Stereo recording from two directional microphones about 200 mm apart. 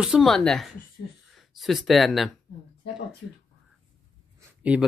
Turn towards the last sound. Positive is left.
turn(degrees=-5)  # may be behind; listen again after turning